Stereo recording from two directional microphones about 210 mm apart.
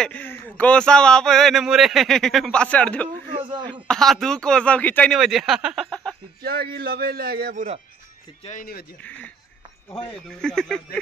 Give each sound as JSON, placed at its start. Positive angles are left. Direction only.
{"t": 0.0, "sound": "speech", "side_deg": 10}
{"t": 3.3, "sound": "speech", "side_deg": -25}
{"t": 3.8, "sound": "speech", "side_deg": 0}
{"t": 6.4, "sound": "a man's voice", "side_deg": -50}
{"t": 8.5, "sound": "speech", "side_deg": 40}
{"t": 9.0, "sound": "speech", "side_deg": 5}